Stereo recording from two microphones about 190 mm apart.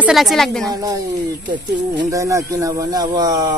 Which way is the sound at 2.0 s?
15° right (ahead or behind).